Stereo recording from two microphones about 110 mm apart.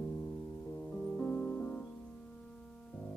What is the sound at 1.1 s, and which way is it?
Music, 15° left (ahead or behind).